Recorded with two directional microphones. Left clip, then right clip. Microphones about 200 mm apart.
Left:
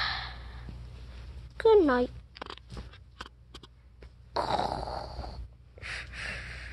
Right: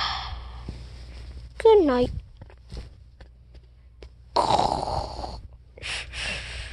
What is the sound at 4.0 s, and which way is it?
Snoring, 20° right (ahead or behind).